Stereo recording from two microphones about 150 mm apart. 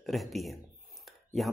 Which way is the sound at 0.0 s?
Centre (ahead or behind).